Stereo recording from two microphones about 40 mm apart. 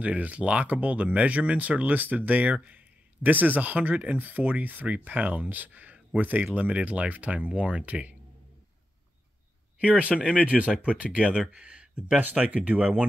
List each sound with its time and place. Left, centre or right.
0.0 s speech: right
9.8 s speech: right
11.5 s a sound: right
12.4 s speech: right